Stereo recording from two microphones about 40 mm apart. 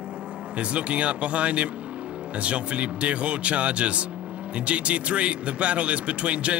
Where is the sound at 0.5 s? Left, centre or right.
Right.